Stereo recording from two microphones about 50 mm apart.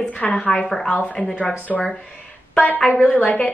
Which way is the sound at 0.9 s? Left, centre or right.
Left.